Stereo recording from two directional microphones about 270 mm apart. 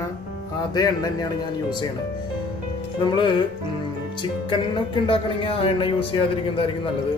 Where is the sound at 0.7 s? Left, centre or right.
Centre.